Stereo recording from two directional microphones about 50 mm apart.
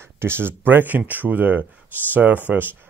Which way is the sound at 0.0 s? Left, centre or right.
Right.